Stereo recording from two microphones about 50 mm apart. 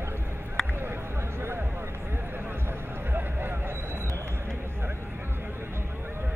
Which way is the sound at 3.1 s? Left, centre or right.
Right.